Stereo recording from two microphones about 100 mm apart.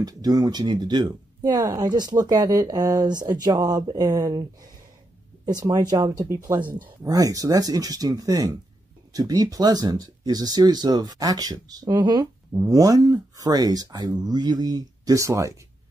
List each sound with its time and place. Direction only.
0.0 s speech: 40° right (ahead or behind)